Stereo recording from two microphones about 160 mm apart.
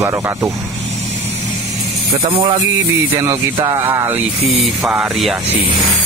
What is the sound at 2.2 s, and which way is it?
Speech, 35° right (ahead or behind).